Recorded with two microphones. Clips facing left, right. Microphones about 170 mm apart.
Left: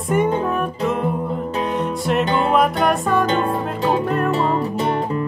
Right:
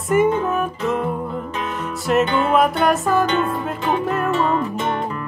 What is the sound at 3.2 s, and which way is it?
Music, 35° left (ahead or behind).